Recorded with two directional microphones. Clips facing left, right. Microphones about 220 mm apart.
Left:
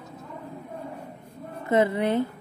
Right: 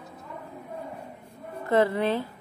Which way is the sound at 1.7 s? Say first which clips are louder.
Left 1 dB; 15° left (ahead or behind).